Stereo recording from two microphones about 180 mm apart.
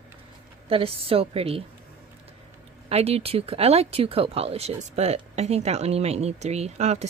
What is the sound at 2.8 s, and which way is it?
Speech, 35° right (ahead or behind).